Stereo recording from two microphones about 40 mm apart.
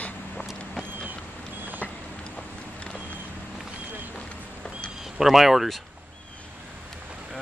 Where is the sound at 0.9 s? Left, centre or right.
Right.